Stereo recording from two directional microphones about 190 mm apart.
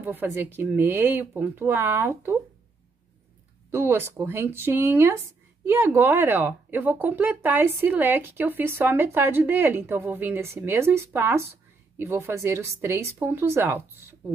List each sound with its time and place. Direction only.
0.0 s speech: 10° right (ahead or behind)
3.7 s speech: 10° right (ahead or behind)